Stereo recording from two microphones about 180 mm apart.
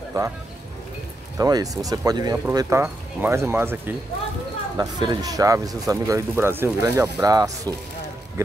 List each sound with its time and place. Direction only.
0.1 s speech: 20° right (ahead or behind)
1.4 s speech: 20° right (ahead or behind)
4.7 s speech: 20° right (ahead or behind)